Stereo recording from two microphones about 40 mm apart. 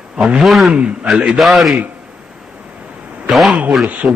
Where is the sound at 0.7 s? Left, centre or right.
Right.